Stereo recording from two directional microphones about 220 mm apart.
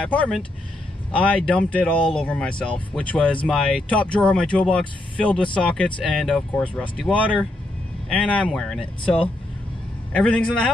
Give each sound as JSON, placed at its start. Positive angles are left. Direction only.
{"t": 0.1, "sound": "speech", "side_deg": 5}
{"t": 9.0, "sound": "speech", "side_deg": 25}
{"t": 10.1, "sound": "speech", "side_deg": 5}